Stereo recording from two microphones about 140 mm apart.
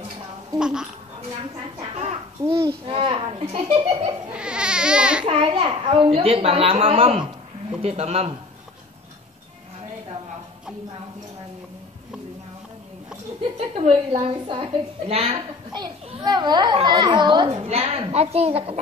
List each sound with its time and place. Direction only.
0.6 s a child's voice: 5° right (ahead or behind)
2.4 s a child's voice: 20° right (ahead or behind)
2.9 s a child's voice: 40° right (ahead or behind)
4.3 s speech: 5° right (ahead or behind)
5.2 s a woman's voice: 40° right (ahead or behind)
13.6 s a woman's voice: 45° right (ahead or behind)
16.2 s a child's voice: 30° right (ahead or behind)
17.6 s a woman's voice: 45° right (ahead or behind)